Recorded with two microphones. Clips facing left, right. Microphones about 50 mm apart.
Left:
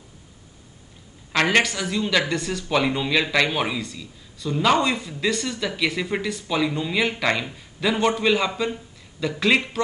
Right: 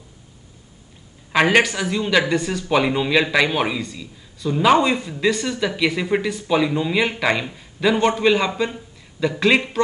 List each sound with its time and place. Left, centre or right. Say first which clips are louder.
1.3 s speech: right 4 dB; centre